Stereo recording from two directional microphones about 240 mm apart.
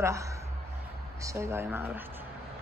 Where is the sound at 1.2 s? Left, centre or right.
Centre.